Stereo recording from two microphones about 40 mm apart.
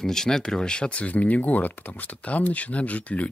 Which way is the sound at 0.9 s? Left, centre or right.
Left.